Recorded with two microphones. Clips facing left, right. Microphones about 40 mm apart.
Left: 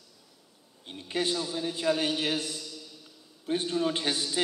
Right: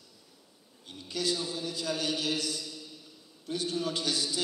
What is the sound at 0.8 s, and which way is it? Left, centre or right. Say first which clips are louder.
A man's voice: left 2 dB; left.